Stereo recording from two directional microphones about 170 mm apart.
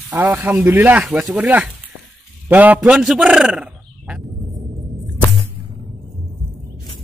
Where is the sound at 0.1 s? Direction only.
15° right (ahead or behind).